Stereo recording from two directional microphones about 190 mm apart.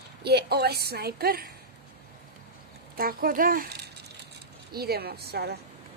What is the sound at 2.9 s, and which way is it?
A woman's voice, 50° right (ahead or behind).